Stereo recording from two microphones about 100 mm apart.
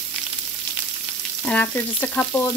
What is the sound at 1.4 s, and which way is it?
Frying, 15° left (ahead or behind).